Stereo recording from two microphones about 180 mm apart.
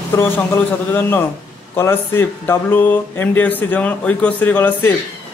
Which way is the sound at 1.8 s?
15° left (ahead or behind).